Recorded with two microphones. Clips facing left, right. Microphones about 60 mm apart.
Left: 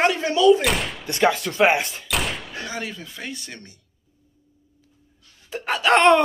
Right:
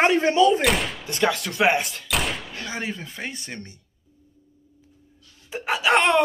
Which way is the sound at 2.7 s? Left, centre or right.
Right.